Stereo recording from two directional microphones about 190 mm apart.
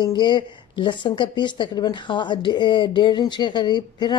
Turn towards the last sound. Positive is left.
turn(degrees=25)  # may be behind; listen again after turning